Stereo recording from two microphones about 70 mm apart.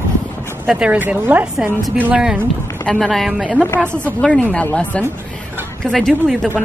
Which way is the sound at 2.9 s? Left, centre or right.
Centre.